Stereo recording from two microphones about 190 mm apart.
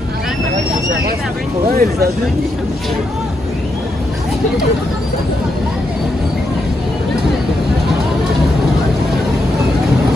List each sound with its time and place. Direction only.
1.7 s speech: 55° right (ahead or behind)